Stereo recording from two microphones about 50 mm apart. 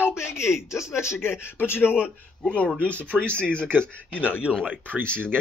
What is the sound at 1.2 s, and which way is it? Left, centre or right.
Speech, left.